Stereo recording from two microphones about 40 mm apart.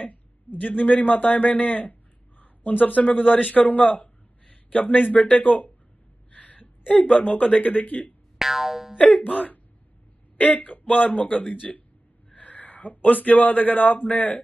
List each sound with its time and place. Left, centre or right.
0.7 s a man's voice: left
6.3 s a sound: left
7.2 s speech: left
8.4 s boing: centre
8.9 s a man's voice: left